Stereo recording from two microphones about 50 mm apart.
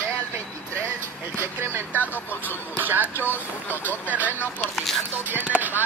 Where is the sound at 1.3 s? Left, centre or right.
Right.